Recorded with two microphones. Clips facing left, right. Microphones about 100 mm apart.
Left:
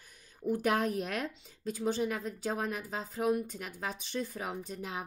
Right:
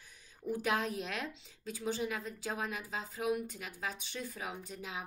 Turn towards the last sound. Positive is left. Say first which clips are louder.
# left 4 dB
turn(degrees=50)  # may be behind; listen again after turning